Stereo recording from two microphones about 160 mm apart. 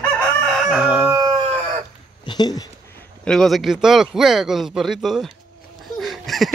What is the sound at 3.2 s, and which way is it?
Speech, 5° left (ahead or behind).